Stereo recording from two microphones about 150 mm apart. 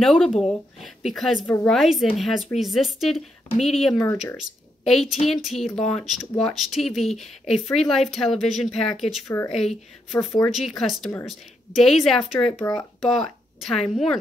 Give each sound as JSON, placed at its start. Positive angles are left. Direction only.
{"t": 0.0, "sound": "speech", "side_deg": 0}
{"t": 12.5, "sound": "speech", "side_deg": 25}
{"t": 13.0, "sound": "speech", "side_deg": 0}